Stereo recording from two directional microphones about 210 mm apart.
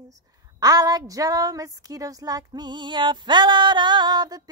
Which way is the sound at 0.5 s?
15° right (ahead or behind).